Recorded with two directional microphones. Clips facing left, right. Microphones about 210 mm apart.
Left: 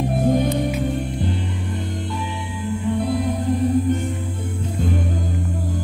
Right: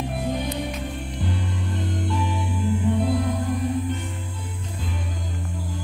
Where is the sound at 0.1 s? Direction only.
45° left (ahead or behind).